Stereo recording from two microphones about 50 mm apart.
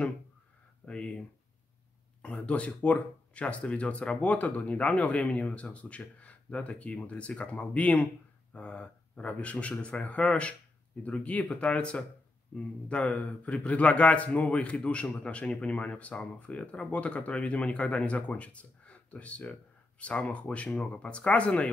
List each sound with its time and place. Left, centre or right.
0.8 s a man's voice: left
2.2 s a man's voice: left